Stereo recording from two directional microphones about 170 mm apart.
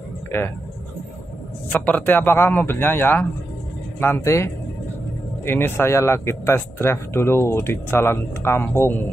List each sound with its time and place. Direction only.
1.7 s a man's voice: 10° left (ahead or behind)